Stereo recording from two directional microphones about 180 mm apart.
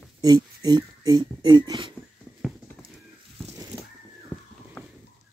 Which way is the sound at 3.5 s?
20° right (ahead or behind).